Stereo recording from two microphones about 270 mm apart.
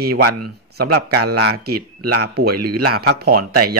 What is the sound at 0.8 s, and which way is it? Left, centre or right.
A man's voice, right.